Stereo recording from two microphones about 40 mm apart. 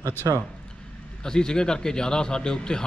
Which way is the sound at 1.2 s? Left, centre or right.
Centre.